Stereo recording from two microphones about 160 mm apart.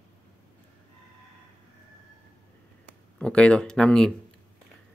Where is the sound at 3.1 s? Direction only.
5° left (ahead or behind).